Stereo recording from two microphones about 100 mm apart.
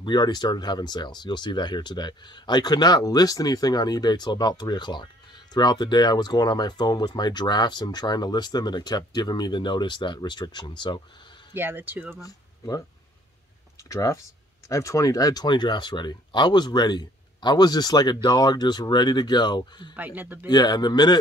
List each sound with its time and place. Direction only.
0.0 s speech: 45° left (ahead or behind)
11.5 s speech: 20° right (ahead or behind)
12.2 s speech: 35° left (ahead or behind)
13.8 s speech: 30° left (ahead or behind); by 19.9 s 45° left (ahead or behind)
20.0 s a man's voice: 20° right (ahead or behind)
20.4 s speech: 45° left (ahead or behind)